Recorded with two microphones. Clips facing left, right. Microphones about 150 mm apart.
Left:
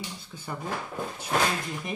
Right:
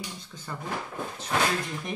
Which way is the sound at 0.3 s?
10° left (ahead or behind).